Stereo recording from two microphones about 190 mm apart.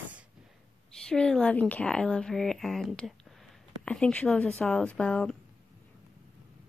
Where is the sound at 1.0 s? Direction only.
5° left (ahead or behind).